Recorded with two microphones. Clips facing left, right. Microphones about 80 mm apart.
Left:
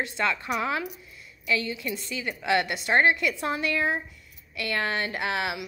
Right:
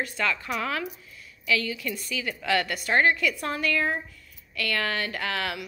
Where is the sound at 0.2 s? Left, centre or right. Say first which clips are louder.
Left 2 dB; centre.